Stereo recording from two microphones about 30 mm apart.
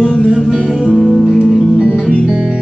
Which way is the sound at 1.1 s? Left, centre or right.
Centre.